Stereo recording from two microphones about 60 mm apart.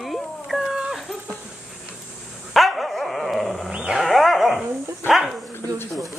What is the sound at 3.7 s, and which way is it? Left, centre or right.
Dog, centre.